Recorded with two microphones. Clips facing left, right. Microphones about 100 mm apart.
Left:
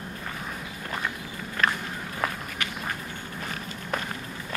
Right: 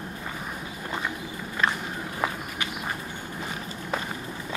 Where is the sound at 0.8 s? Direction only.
15° right (ahead or behind).